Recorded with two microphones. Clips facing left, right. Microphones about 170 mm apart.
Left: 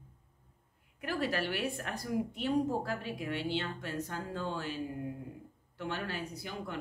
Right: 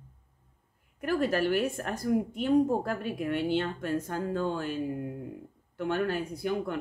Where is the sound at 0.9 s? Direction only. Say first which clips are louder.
Right 7 dB; 50° right (ahead or behind).